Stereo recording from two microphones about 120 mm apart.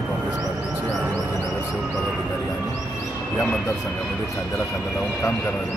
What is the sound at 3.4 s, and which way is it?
Speech, centre (ahead or behind).